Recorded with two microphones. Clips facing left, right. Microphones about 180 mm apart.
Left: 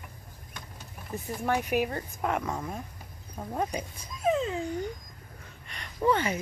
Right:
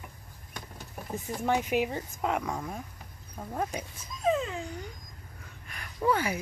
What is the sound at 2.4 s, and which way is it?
Speech, 5° left (ahead or behind).